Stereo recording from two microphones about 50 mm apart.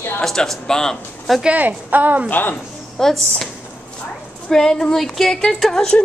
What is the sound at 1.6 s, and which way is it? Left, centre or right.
Speech, right.